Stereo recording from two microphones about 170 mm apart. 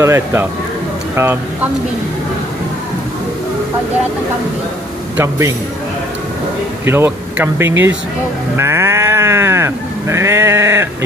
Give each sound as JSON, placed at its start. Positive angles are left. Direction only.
{"t": 0.0, "sound": "speech", "side_deg": -15}
{"t": 5.1, "sound": "speech", "side_deg": -15}
{"t": 6.9, "sound": "speech", "side_deg": -15}
{"t": 8.5, "sound": "sheep", "side_deg": -15}